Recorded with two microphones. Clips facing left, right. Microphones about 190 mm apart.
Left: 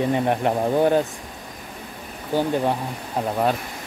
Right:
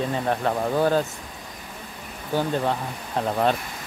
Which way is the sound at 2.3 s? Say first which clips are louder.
Left 2 dB; 15° left (ahead or behind).